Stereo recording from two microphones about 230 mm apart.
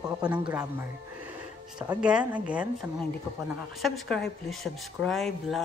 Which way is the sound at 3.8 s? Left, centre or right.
Centre.